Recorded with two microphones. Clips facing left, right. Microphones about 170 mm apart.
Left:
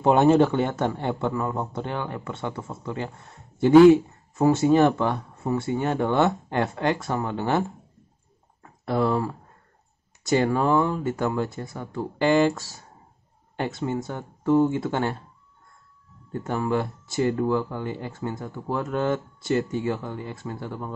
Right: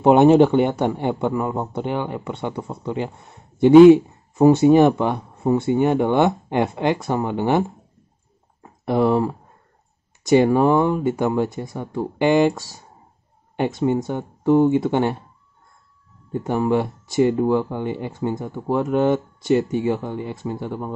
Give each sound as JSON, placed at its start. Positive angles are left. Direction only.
{"t": 0.0, "sound": "a man's voice", "side_deg": -20}
{"t": 8.6, "sound": "a man's voice", "side_deg": -15}
{"t": 16.3, "sound": "speech", "side_deg": -20}